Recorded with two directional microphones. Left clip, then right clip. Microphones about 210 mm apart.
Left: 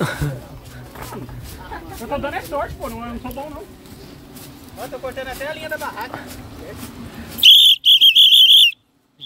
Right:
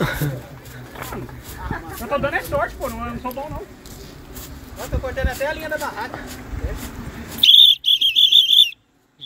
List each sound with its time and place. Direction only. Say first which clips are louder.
0.0 s a sound: even; centre (ahead or behind)
2.0 s speech: right 3 dB; 30° right (ahead or behind)
5.0 s speech: right 4 dB; 45° right (ahead or behind)
7.4 s whistle: left 2 dB; 15° left (ahead or behind)